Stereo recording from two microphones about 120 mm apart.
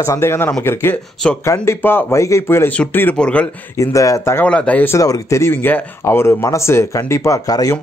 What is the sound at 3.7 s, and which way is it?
A man's voice, 25° left (ahead or behind).